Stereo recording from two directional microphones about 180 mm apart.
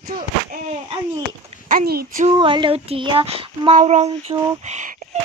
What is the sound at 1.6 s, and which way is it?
Speech, 55° right (ahead or behind).